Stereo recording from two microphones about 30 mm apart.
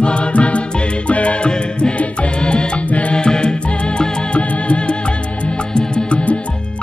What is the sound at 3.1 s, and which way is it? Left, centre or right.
Music, left.